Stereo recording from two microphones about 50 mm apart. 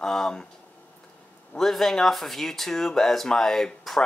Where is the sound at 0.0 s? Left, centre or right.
Centre.